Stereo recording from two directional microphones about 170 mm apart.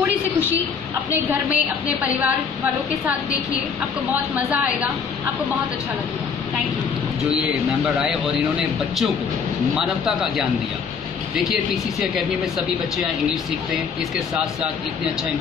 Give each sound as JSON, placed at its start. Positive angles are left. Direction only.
{"t": 1.3, "sound": "a woman's voice", "side_deg": -10}
{"t": 4.1, "sound": "a woman's voice", "side_deg": -5}
{"t": 8.5, "sound": "speech", "side_deg": 0}